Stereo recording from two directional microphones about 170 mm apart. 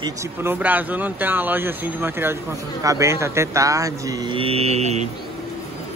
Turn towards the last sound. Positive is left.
turn(degrees=-40)  # may be behind; listen again after turning